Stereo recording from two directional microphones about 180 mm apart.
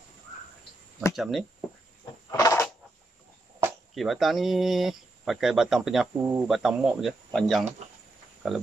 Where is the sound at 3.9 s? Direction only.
Centre (ahead or behind).